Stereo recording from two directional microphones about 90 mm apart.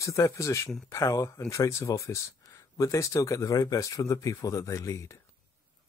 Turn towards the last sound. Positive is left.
turn(degrees=35)  # may be behind; listen again after turning